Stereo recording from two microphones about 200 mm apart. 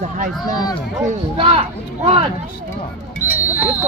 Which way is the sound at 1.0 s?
30° right (ahead or behind).